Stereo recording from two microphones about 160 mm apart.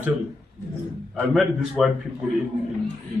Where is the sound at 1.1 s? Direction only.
5° right (ahead or behind).